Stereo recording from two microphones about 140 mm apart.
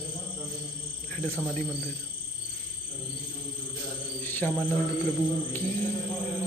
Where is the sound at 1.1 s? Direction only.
10° left (ahead or behind).